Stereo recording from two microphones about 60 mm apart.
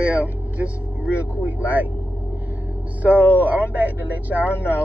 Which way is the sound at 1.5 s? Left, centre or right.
Right.